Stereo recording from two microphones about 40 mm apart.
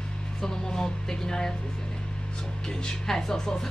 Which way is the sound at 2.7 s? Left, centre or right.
Centre.